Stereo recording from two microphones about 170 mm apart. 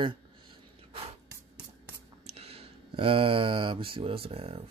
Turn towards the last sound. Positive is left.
turn(degrees=-35)  # may be behind; listen again after turning